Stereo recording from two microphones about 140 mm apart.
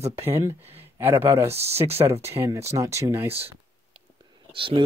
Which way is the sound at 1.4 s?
45° right (ahead or behind).